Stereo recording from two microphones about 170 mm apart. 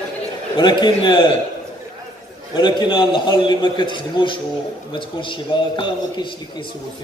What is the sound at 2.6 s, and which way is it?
A man's voice, 25° left (ahead or behind).